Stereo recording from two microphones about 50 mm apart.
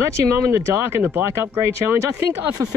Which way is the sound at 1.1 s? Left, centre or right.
Right.